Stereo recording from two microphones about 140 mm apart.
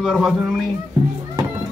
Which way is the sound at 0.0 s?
5° right (ahead or behind).